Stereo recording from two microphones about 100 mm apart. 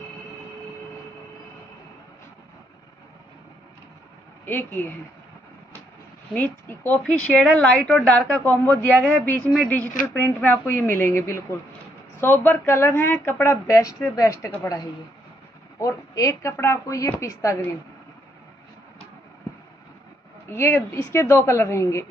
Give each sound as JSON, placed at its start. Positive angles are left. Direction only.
{"t": 4.5, "sound": "speech", "side_deg": 20}
{"t": 6.3, "sound": "a woman's voice", "side_deg": 20}
{"t": 15.8, "sound": "speech", "side_deg": 30}
{"t": 20.4, "sound": "speech", "side_deg": 25}